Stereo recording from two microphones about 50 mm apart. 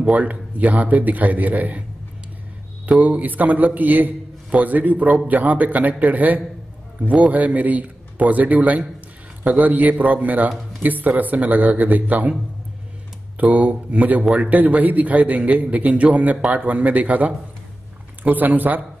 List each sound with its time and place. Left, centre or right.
0.0 s a man's voice: right
3.0 s a man's voice: right
13.4 s a man's voice: right